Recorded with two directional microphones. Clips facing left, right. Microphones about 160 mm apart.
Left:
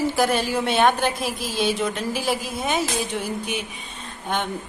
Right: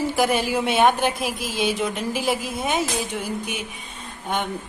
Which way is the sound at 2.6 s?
5° right (ahead or behind).